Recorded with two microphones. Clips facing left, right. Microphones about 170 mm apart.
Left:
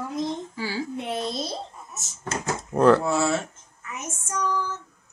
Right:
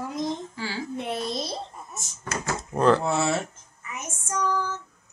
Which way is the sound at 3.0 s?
25° right (ahead or behind).